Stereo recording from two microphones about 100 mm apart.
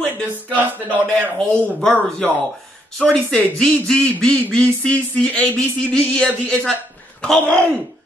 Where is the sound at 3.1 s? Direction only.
5° left (ahead or behind).